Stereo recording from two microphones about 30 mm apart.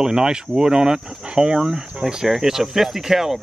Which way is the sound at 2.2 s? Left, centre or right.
Centre.